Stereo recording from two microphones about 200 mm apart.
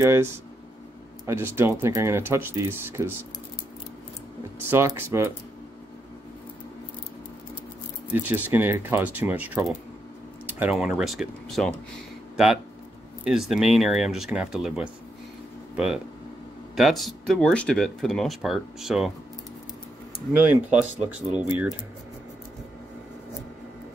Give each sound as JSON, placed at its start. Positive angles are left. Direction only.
{"t": 0.0, "sound": "speech", "side_deg": -15}
{"t": 4.6, "sound": "speech", "side_deg": -10}
{"t": 8.1, "sound": "speech", "side_deg": -10}
{"t": 13.2, "sound": "speech", "side_deg": 0}
{"t": 20.3, "sound": "speech", "side_deg": -10}
{"t": 21.3, "sound": "speech", "side_deg": 20}